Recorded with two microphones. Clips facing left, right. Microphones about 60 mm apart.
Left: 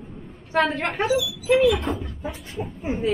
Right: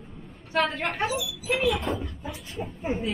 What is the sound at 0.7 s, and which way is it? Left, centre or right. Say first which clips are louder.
Speech: left 4 dB; left.